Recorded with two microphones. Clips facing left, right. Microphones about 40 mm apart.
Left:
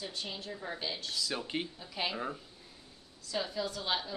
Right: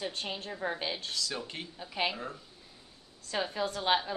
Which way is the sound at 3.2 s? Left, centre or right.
Right.